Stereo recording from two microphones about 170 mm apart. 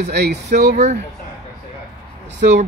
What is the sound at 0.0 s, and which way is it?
Speech, 75° right (ahead or behind).